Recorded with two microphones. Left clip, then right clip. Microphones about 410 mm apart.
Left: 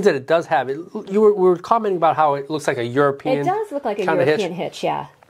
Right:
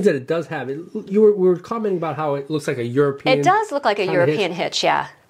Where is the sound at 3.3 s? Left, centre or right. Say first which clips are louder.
Right 4 dB; right.